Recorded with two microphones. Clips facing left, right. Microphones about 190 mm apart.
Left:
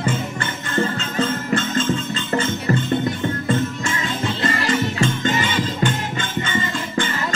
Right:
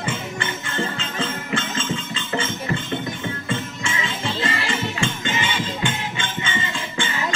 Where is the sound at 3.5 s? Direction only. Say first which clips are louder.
Left 6 dB; 40° left (ahead or behind).